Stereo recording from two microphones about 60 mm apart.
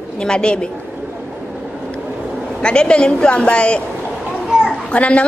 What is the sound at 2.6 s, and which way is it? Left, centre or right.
A woman's voice, centre.